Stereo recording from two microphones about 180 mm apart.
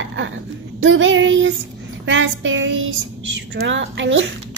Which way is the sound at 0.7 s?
90° right.